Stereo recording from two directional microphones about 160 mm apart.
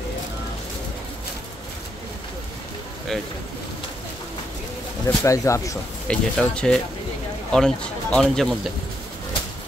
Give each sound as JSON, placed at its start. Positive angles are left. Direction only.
{"t": 5.0, "sound": "speech", "side_deg": 20}
{"t": 6.0, "sound": "speech", "side_deg": 5}